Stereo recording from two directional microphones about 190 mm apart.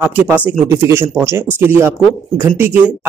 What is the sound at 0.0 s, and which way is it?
A man's voice, 10° right (ahead or behind).